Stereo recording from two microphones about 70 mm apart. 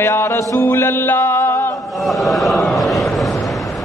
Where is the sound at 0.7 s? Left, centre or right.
Left.